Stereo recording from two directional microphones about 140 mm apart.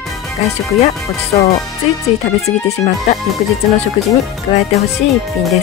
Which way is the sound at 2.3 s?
50° left (ahead or behind).